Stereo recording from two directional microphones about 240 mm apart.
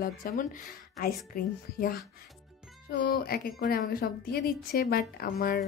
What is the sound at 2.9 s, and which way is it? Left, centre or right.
A woman's voice, left.